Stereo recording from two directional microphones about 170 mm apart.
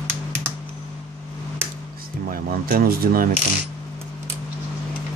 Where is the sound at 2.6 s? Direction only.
60° right (ahead or behind).